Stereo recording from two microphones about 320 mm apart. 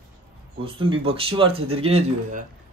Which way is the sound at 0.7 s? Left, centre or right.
Centre.